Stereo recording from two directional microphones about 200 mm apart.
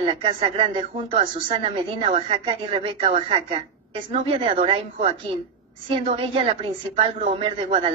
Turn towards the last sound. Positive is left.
turn(degrees=-25)  # may be behind; listen again after turning